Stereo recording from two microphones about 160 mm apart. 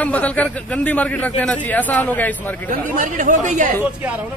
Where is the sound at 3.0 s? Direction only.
50° right (ahead or behind).